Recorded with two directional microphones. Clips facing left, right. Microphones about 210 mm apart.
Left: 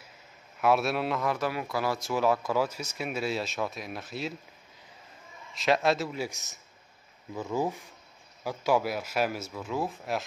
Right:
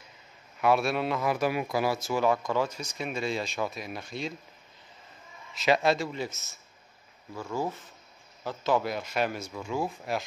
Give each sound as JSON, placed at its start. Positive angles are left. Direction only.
{"t": 0.6, "sound": "speech", "side_deg": 0}
{"t": 1.3, "sound": "speech", "side_deg": -15}
{"t": 2.0, "sound": "speech", "side_deg": 0}
{"t": 5.5, "sound": "speech", "side_deg": 0}